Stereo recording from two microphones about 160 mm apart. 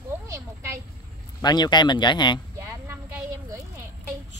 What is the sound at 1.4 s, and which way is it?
Speech, 25° left (ahead or behind).